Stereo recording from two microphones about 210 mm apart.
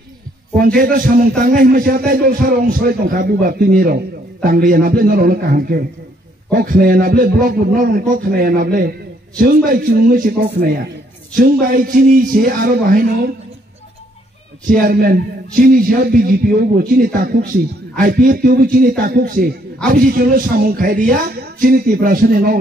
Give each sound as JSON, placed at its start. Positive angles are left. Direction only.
{"t": 0.6, "sound": "a man's voice", "side_deg": -45}
{"t": 14.7, "sound": "a man's voice", "side_deg": -45}